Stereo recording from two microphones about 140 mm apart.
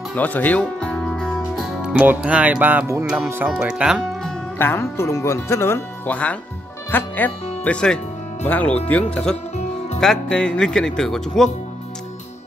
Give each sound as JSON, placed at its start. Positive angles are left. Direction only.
{"t": 0.1, "sound": "speech", "side_deg": 10}
{"t": 4.6, "sound": "speech", "side_deg": 15}